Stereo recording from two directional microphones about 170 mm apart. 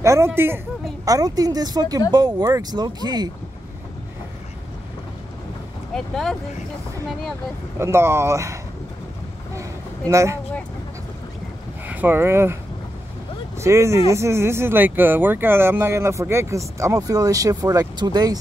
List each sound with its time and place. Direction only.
0.0 s a woman's voice: 15° right (ahead or behind)
5.9 s speech: centre (ahead or behind)
7.8 s speech: 15° right (ahead or behind)
9.6 s a sound: 15° right (ahead or behind)
11.9 s speech: 10° right (ahead or behind)
13.6 s speech: 15° right (ahead or behind)